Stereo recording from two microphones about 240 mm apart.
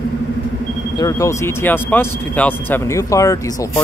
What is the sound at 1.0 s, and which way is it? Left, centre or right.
Speech, centre.